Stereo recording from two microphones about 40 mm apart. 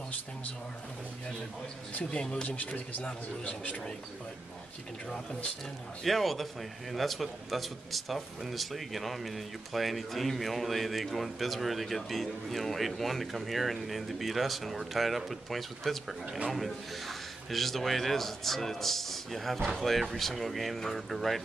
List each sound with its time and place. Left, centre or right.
2.0 s speech: left
2.4 s speech: left
5.1 s speech: left
6.0 s a man's voice: centre